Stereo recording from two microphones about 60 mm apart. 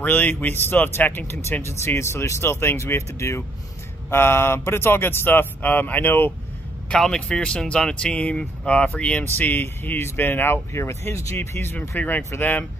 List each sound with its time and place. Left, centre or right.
0.0 s speech: left
4.1 s speech: left
6.9 s speech: centre
9.2 s speech: left
11.3 s speech: left